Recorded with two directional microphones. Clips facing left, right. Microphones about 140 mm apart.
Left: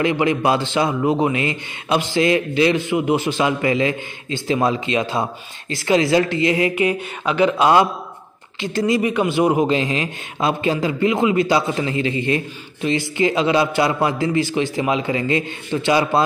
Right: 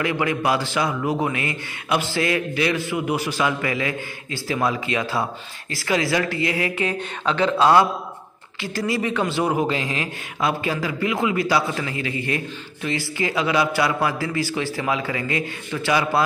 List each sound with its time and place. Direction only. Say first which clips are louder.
0.0 s a man's voice: left 4 dB; 25° left (ahead or behind)